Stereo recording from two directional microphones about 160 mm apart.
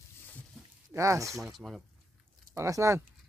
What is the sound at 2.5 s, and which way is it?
Speech, 20° right (ahead or behind).